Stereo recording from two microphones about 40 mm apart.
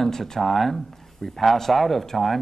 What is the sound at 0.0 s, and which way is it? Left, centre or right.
Speech, centre.